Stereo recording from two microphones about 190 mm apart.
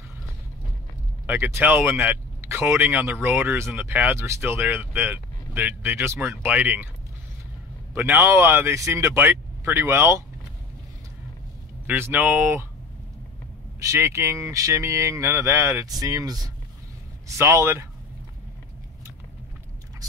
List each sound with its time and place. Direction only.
1.2 s speech: 10° right (ahead or behind)
7.9 s speech: 10° right (ahead or behind)
11.8 s speech: 10° right (ahead or behind)
13.7 s speech: 15° right (ahead or behind)